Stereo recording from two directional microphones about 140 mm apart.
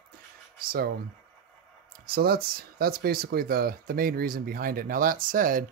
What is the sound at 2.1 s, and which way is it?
Speech, 90° right.